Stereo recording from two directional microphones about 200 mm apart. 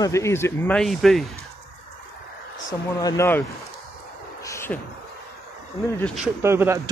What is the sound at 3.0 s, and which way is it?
Speech, 15° left (ahead or behind).